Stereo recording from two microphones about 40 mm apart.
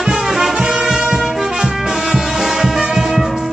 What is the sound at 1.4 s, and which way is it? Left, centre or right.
Music, centre.